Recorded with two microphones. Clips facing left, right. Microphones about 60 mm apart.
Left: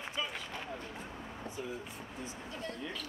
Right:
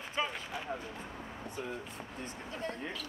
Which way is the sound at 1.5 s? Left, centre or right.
Right.